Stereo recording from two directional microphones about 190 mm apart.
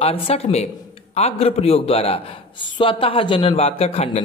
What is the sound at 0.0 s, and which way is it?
A man's voice, 30° left (ahead or behind).